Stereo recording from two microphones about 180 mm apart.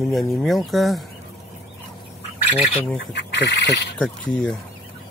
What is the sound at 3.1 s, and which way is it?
Speech, 70° left (ahead or behind).